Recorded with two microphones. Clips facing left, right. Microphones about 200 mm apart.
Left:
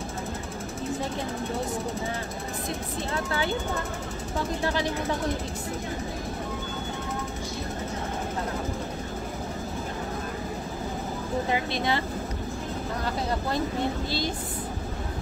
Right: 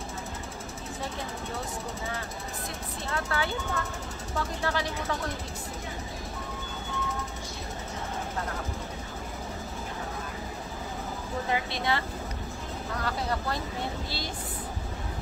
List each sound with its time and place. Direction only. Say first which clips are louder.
3.1 s speech: left 2 dB; 20° left (ahead or behind)
11.5 s speech: even; 20° left (ahead or behind)